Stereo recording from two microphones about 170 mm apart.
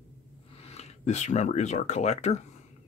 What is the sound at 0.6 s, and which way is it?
Speech, 40° left (ahead or behind).